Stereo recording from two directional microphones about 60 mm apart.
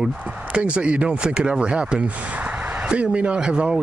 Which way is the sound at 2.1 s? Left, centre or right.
Right.